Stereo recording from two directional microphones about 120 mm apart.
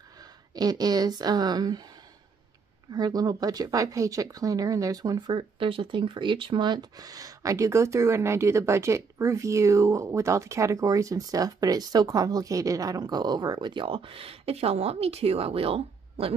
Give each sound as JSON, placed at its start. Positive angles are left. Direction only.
{"t": 0.2, "sound": "speech", "side_deg": -35}
{"t": 2.9, "sound": "speech", "side_deg": -35}
{"t": 5.4, "sound": "speech", "side_deg": -50}